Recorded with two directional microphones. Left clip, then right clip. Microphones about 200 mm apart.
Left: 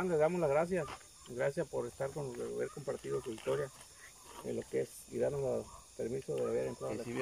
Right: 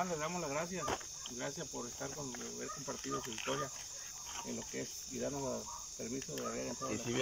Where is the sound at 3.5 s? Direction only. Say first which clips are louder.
Left 4 dB; 30° left (ahead or behind).